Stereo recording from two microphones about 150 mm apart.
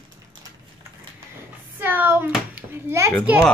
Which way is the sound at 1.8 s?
10° right (ahead or behind).